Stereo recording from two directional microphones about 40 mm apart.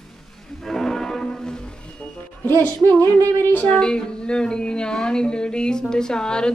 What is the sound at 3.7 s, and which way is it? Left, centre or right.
A woman's voice, left.